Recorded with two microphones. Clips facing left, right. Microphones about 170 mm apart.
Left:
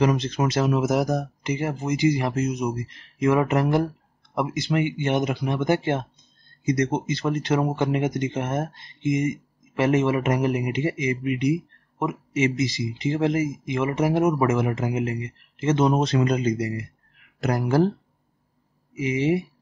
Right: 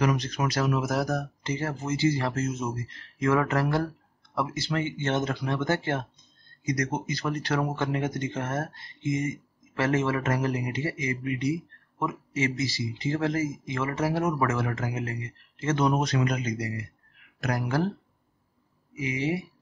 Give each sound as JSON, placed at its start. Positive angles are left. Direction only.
{"t": 0.0, "sound": "speech", "side_deg": 25}
{"t": 18.9, "sound": "speech", "side_deg": 25}